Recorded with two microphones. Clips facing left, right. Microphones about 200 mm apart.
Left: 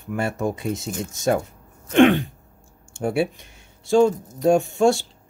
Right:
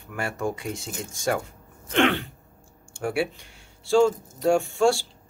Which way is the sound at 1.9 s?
15° left (ahead or behind).